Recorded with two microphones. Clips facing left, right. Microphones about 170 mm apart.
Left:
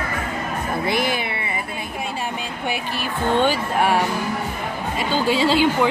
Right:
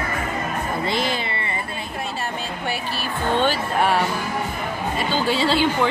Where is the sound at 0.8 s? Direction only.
15° left (ahead or behind).